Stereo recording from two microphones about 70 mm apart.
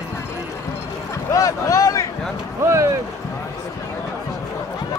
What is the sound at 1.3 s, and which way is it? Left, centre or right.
Boat, left.